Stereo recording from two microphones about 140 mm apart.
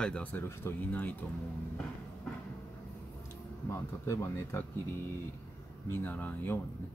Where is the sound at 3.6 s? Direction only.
20° left (ahead or behind).